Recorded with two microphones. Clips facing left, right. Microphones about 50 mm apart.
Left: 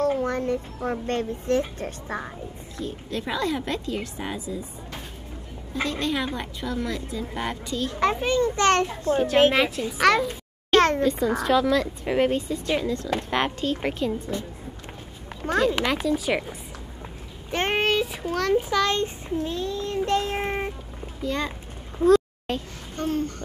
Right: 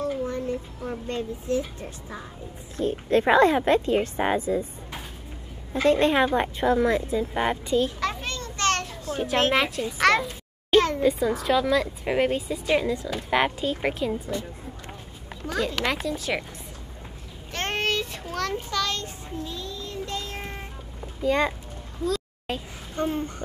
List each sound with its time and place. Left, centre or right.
0.2 s a child's voice: left
2.8 s speech: right
5.9 s a woman's voice: right
8.0 s a child's voice: centre
9.5 s a child's voice: centre
15.6 s a woman's voice: centre
17.5 s a sound: centre
18.2 s a child's voice: centre
19.4 s child singing: left
21.2 s a child's voice: centre
22.5 s a woman's voice: centre
22.9 s a woman's voice: centre